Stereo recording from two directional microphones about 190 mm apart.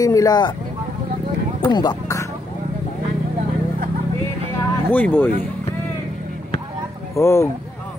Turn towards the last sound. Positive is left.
turn(degrees=15)  # may be behind; listen again after turning